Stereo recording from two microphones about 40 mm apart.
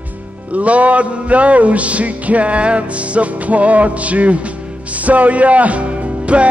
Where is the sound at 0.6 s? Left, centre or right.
Right.